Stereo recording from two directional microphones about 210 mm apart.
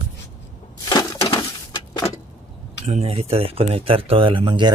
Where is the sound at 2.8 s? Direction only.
30° right (ahead or behind).